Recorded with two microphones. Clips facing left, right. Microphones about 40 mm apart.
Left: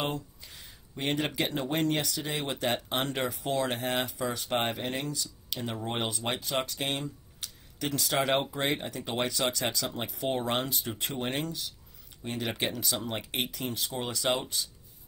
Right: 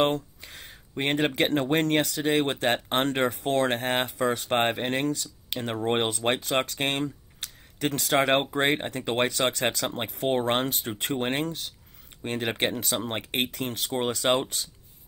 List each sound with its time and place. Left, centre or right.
0.0 s speech: right